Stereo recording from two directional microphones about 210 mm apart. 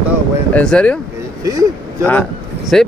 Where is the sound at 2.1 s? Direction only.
5° left (ahead or behind).